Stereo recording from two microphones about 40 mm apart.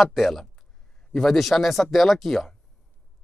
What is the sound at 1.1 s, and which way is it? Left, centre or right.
Speech, centre.